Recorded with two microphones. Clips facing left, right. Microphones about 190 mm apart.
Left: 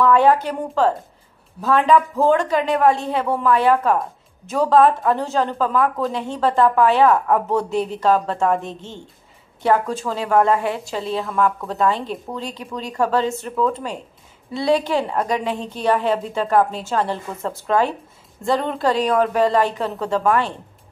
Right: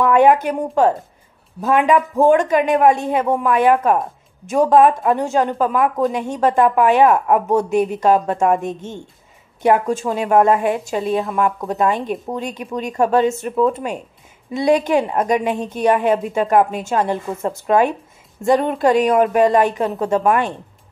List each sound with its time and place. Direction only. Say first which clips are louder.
0.0 s a woman's voice: right 2 dB; 15° right (ahead or behind)